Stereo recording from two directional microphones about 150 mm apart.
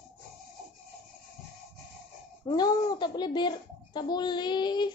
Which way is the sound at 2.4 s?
25° left (ahead or behind).